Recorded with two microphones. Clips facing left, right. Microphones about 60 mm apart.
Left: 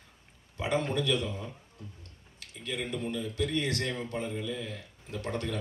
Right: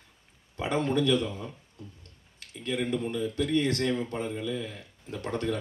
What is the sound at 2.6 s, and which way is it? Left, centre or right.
Speech, right.